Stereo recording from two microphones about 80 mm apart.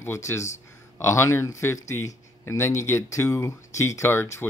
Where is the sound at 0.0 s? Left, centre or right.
Left.